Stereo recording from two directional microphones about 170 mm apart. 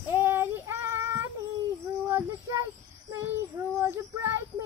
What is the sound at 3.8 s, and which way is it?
Child singing, 15° right (ahead or behind).